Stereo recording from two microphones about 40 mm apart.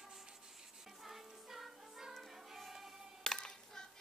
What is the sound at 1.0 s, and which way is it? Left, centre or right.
Music, centre.